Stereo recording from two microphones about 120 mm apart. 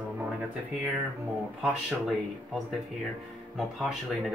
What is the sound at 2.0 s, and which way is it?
Speech, centre (ahead or behind).